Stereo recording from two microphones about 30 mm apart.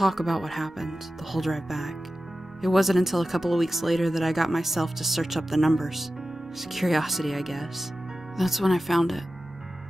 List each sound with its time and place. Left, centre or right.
0.0 s speech: centre